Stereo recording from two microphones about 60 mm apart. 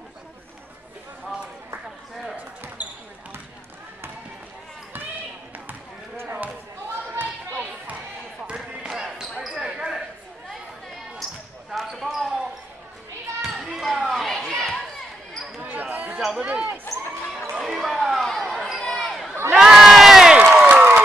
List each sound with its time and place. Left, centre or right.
2.3 s basketball bounce: right
5.7 s basketball bounce: right
8.8 s basketball bounce: centre
9.2 s basketball bounce: centre
9.6 s basketball bounce: centre
11.7 s basketball bounce: centre
13.4 s children playing: centre
15.6 s chatter: right
16.3 s a sound: right
17.6 s run: centre
18.2 s basketball bounce: centre
19.5 s crowd: centre
20.6 s a sound: right